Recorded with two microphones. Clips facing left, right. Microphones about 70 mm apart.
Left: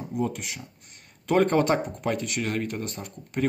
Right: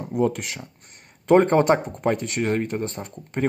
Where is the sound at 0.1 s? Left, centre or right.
Right.